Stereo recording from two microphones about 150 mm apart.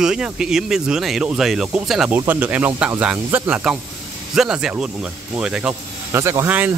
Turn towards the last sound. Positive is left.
turn(degrees=-10)  # may be behind; listen again after turning